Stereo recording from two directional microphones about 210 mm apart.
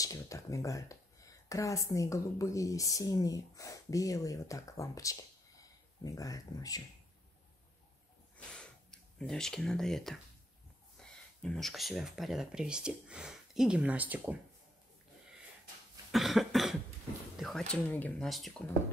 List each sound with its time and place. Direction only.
0.0 s speech: 15° left (ahead or behind)
8.5 s speech: 5° left (ahead or behind)
16.1 s cough: centre (ahead or behind)
17.4 s speech: centre (ahead or behind)